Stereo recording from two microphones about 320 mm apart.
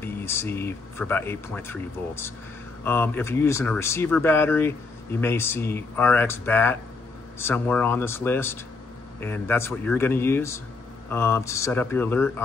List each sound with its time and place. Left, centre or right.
0.0 s speech: centre